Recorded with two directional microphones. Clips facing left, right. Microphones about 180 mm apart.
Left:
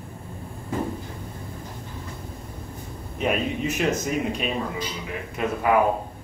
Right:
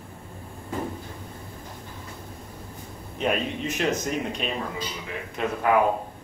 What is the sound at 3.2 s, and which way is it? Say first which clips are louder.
Speech: left 2 dB; 5° left (ahead or behind).